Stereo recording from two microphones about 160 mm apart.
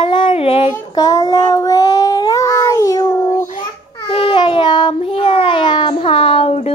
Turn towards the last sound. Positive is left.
turn(degrees=40)  # may be behind; listen again after turning